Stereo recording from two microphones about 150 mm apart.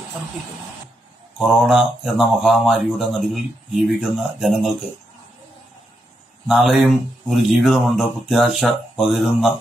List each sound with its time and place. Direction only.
1.4 s speech: 5° right (ahead or behind)
6.4 s speech: 5° right (ahead or behind)